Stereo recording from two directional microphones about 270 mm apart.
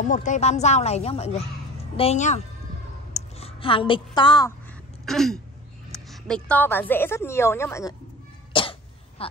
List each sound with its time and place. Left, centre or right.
0.0 s a woman's voice: left
5.0 s throat clearing: centre
6.0 s a woman's voice: centre
8.5 s cough: centre
9.2 s a sound: left